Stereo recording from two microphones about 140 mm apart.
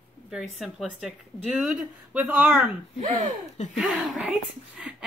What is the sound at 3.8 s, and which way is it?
Speech, centre (ahead or behind).